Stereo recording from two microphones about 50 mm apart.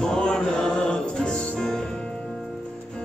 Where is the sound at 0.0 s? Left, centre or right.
Centre.